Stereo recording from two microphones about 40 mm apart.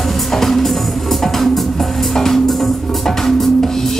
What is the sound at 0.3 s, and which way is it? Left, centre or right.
Music, centre.